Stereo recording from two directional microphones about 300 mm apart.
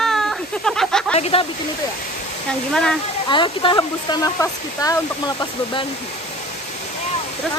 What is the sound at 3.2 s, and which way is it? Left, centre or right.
Speech, centre.